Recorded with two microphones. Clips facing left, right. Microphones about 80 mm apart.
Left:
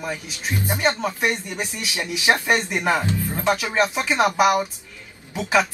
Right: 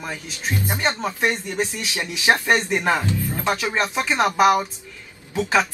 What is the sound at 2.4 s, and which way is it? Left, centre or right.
Speech, centre.